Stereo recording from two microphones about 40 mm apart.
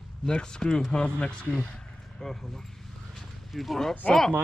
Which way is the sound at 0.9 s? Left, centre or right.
Left.